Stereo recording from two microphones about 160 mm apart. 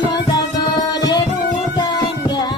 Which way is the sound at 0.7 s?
25° left (ahead or behind).